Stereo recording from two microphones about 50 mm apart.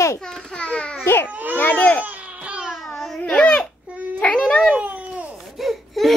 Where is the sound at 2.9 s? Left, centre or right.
Centre.